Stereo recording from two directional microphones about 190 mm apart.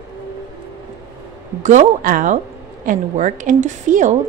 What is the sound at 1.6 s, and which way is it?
Speech, 40° right (ahead or behind).